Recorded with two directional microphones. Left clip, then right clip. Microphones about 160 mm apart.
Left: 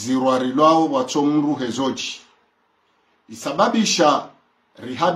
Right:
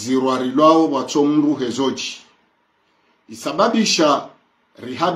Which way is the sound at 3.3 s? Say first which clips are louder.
Right 1 dB; 20° left (ahead or behind).